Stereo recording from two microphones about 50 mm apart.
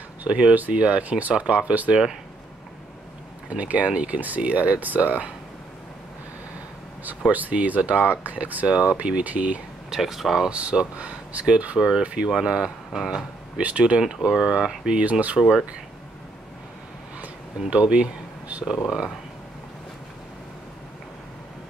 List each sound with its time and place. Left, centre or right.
0.2 s speech: right
3.4 s speech: right
7.1 s speech: right
9.8 s speech: centre
10.5 s speech: right
11.8 s speech: centre
13.6 s speech: right
13.9 s speech: centre
15.0 s speech: right
17.6 s speech: right
18.7 s speech: centre